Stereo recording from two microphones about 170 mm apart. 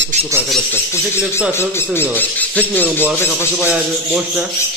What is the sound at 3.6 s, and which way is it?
Speech, 5° right (ahead or behind).